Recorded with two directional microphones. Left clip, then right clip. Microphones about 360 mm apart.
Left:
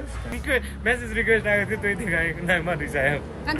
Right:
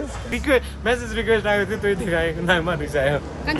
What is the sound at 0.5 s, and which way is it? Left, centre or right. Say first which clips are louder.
Speech: right 4 dB; centre.